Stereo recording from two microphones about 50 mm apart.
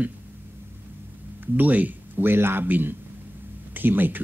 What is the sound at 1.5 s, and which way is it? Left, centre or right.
Speech, right.